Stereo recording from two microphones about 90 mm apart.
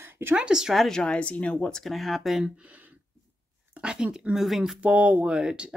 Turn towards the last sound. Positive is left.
turn(degrees=-10)  # may be behind; listen again after turning